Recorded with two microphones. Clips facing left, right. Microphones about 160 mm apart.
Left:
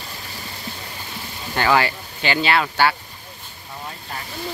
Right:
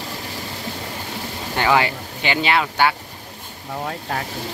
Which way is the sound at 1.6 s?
15° right (ahead or behind).